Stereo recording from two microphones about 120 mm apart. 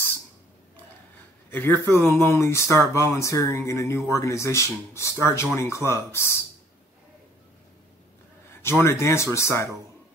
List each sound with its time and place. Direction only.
1.5 s speech: 15° left (ahead or behind)
8.6 s speech: 20° left (ahead or behind)